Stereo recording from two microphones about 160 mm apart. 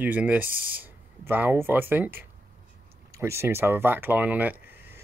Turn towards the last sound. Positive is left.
turn(degrees=-10)  # may be behind; listen again after turning